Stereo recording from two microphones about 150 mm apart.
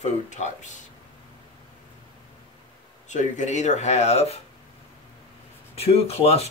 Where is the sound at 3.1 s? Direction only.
55° left (ahead or behind).